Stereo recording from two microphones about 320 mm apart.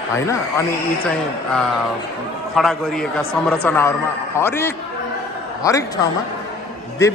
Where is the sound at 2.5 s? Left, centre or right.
Centre.